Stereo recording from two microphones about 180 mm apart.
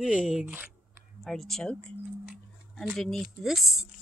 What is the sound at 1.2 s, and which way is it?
Speech, centre (ahead or behind).